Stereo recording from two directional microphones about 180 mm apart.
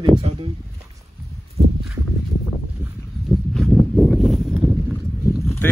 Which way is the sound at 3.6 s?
Centre (ahead or behind).